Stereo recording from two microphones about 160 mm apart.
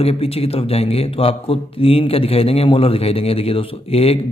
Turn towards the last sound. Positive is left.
turn(degrees=35)  # may be behind; listen again after turning